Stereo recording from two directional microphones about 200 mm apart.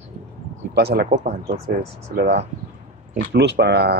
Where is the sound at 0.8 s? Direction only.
50° right (ahead or behind).